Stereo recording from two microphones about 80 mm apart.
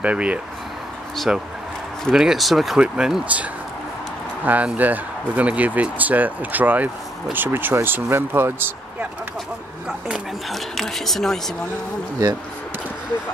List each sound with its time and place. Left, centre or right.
0.0 s speech: centre
2.8 s speech: centre
4.5 s speech: centre
9.8 s speech: centre
10.5 s speech: centre